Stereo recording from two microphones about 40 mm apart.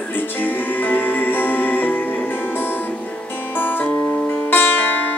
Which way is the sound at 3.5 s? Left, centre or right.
Left.